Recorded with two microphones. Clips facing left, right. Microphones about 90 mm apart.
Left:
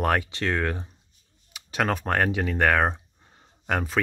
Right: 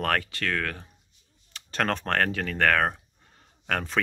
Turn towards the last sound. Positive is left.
turn(degrees=10)  # may be behind; listen again after turning